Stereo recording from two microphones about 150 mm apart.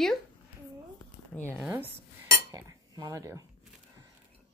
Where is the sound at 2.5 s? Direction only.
25° right (ahead or behind).